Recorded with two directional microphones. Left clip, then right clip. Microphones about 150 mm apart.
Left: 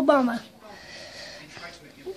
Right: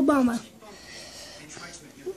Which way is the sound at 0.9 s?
5° right (ahead or behind).